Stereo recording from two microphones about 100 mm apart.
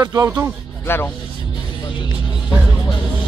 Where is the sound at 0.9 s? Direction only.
20° left (ahead or behind).